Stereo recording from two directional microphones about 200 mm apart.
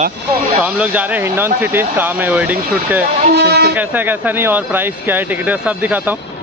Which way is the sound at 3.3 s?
55° right (ahead or behind).